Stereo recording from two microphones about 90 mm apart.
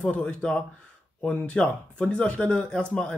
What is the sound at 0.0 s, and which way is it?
Speech, 15° left (ahead or behind).